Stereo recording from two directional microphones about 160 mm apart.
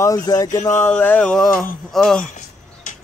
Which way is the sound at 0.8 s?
10° left (ahead or behind).